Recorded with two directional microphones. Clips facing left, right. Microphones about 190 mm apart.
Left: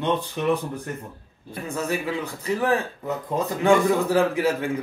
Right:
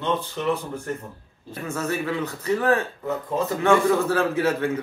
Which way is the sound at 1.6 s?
15° left (ahead or behind).